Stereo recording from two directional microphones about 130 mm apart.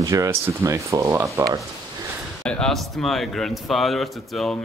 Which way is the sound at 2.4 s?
5° left (ahead or behind).